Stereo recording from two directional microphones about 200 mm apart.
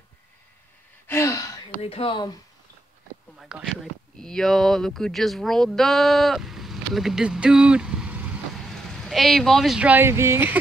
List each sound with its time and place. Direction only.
1.0 s gasp: 15° left (ahead or behind)
1.8 s speech: 30° left (ahead or behind)
3.3 s a sound: 5° right (ahead or behind)
4.2 s speech: 5° left (ahead or behind)